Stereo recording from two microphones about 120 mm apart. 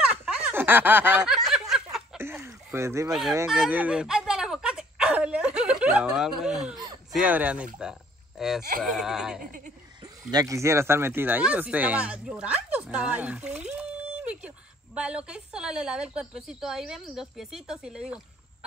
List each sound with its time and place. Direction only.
0.0 s snicker: 10° right (ahead or behind)
1.2 s snicker: 5° right (ahead or behind)
2.1 s a sound: 20° right (ahead or behind)
3.1 s speech: 5° right (ahead or behind)
3.4 s a sound: 5° right (ahead or behind)
7.1 s a woman's voice: 10° right (ahead or behind)
10.3 s a woman's voice: 25° right (ahead or behind); by 18.2 s 5° right (ahead or behind)